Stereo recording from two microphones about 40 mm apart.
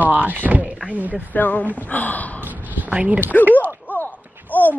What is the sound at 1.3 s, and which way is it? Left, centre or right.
Speech, left.